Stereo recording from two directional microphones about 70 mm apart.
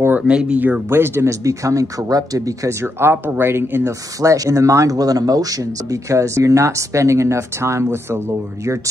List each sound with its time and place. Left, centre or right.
0.3 s speech: centre
0.8 s speech: right
1.4 s speech: right
2.8 s speech: right
3.8 s speech: right